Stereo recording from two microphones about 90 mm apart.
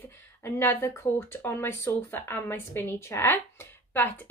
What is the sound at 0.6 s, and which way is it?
Speech, 30° left (ahead or behind).